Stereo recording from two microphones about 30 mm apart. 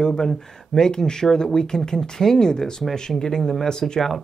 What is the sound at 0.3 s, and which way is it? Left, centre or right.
Speech, left.